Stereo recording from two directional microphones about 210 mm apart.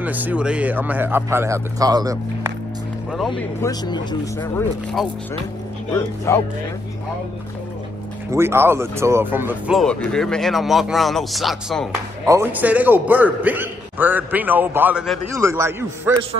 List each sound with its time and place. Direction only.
0.0 s a man's voice: 5° right (ahead or behind)
3.3 s speech: 20° left (ahead or behind)
5.0 s speech: centre (ahead or behind)
5.9 s speech: 10° left (ahead or behind)
8.3 s speech: 10° right (ahead or behind)
12.3 s a man's voice: 10° right (ahead or behind)